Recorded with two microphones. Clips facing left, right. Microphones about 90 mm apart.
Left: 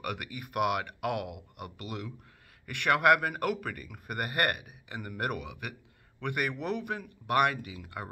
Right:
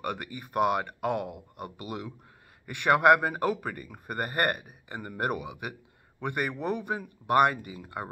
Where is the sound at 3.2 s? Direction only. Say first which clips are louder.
Right 3 dB; 20° right (ahead or behind).